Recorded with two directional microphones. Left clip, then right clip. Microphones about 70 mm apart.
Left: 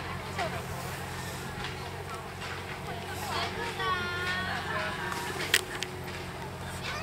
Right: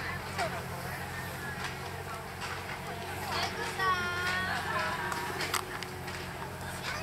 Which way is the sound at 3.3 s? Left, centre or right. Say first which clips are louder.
Left 1 dB; right.